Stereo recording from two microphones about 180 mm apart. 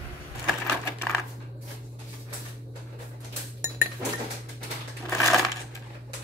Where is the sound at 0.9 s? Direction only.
15° left (ahead or behind).